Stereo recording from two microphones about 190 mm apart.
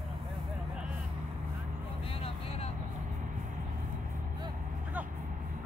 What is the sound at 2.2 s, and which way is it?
Vehicle, 30° left (ahead or behind).